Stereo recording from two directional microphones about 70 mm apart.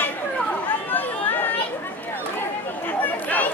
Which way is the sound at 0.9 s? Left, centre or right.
Left.